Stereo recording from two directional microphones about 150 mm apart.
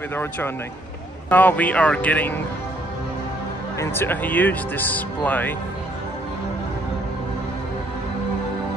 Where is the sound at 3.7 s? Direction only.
15° left (ahead or behind).